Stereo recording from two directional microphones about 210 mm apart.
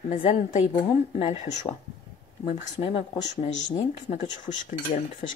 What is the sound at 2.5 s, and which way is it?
Speech, 30° left (ahead or behind).